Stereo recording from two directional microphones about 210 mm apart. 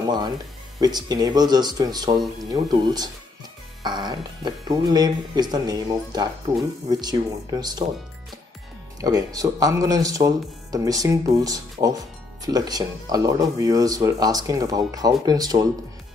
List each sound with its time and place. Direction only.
0.0 s speech: 20° right (ahead or behind)
9.0 s speech: 15° right (ahead or behind)